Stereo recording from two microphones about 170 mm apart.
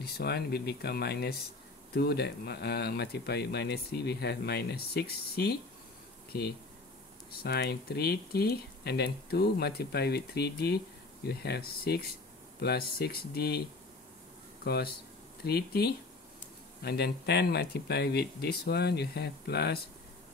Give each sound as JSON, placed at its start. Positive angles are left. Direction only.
{"t": 0.0, "sound": "speech", "side_deg": 70}
{"t": 7.2, "sound": "speech", "side_deg": 70}